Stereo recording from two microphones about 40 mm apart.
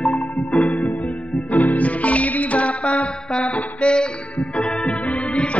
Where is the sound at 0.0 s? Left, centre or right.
Left.